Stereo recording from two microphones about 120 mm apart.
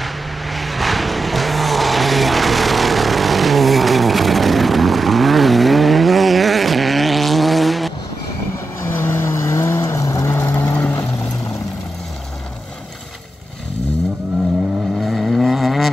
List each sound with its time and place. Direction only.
0.0 s vehicle: centre (ahead or behind)
8.9 s vehicle: 20° left (ahead or behind)
15.0 s vehicle: centre (ahead or behind)